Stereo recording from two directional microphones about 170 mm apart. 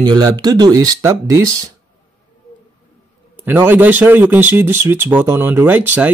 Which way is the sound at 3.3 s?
10° right (ahead or behind).